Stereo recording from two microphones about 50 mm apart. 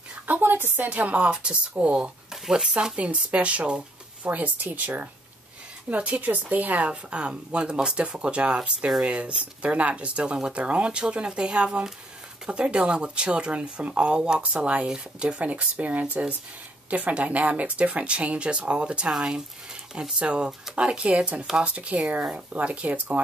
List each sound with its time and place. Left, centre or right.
0.3 s speech: right
2.4 s speech: centre
2.7 s a woman's voice: right
6.9 s speech: right